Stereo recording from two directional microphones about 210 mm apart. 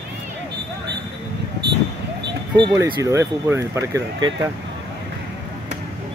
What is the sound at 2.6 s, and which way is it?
Speech, 15° right (ahead or behind).